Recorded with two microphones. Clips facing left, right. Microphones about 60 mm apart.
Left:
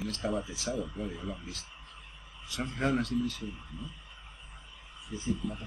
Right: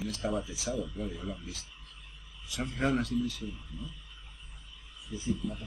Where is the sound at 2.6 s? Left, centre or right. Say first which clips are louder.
Even; centre.